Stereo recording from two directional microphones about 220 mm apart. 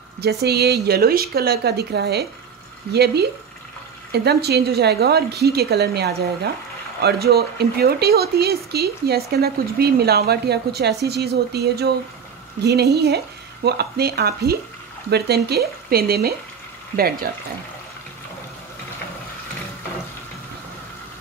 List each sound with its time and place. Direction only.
0.2 s speech: 50° right (ahead or behind)